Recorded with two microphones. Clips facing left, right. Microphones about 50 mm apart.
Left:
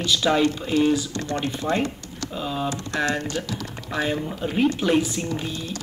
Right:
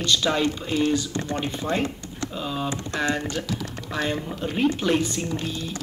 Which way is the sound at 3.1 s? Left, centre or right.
Centre.